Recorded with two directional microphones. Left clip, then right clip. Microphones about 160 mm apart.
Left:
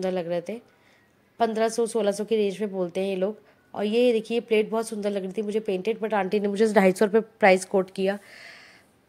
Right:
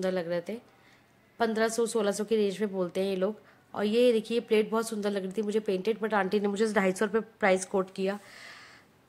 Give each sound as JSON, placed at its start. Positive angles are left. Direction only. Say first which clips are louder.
{"t": 0.0, "sound": "a woman's voice", "louder": "left 3 dB", "side_deg": 10}
{"t": 6.6, "sound": "a woman's voice", "louder": "left 10 dB", "side_deg": 20}